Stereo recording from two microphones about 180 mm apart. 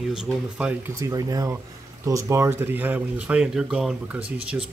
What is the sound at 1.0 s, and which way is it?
Speech, 20° right (ahead or behind).